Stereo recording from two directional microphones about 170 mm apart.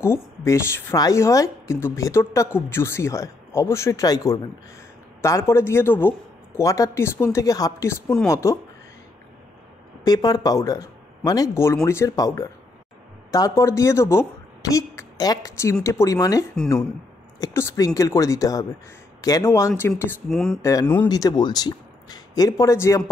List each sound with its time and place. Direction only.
0.0 s a woman's voice: 15° left (ahead or behind)
10.0 s a woman's voice: 25° left (ahead or behind)
13.3 s a woman's voice: 20° left (ahead or behind)
20.2 s speech: 5° left (ahead or behind)
20.6 s a woman's voice: 15° left (ahead or behind)
21.1 s speech: 20° left (ahead or behind)